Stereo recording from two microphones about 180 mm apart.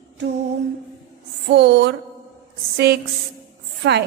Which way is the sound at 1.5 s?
70° right (ahead or behind).